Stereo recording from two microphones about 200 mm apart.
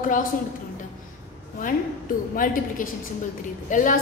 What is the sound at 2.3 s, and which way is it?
A woman's voice, 45° left (ahead or behind).